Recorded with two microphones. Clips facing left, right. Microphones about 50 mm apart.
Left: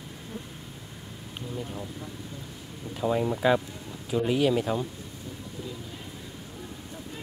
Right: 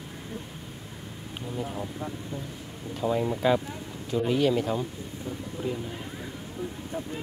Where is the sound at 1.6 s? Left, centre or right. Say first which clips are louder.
Right 5 dB; centre.